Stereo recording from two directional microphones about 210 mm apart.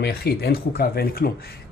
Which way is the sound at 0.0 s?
50° left (ahead or behind).